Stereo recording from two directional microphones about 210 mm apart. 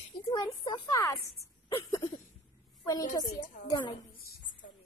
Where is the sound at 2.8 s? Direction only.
15° left (ahead or behind).